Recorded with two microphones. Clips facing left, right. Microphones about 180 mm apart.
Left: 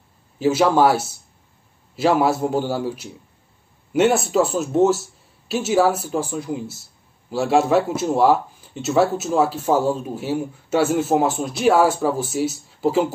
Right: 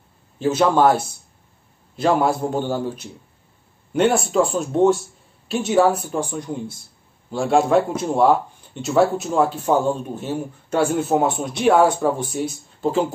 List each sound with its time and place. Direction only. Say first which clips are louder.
0.4 s a man's voice: left 1 dB; 10° left (ahead or behind)